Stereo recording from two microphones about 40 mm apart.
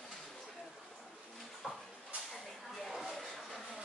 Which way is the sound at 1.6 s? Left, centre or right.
Centre.